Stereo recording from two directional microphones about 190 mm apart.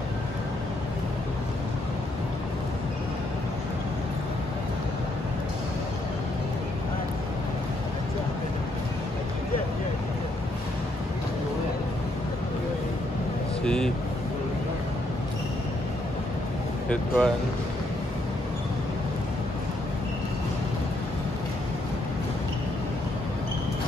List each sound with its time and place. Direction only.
13.7 s vehicle: 5° left (ahead or behind)
16.9 s music: 5° left (ahead or behind)